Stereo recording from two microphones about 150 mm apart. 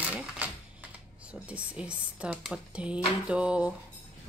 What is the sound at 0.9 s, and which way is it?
Speech, 10° right (ahead or behind).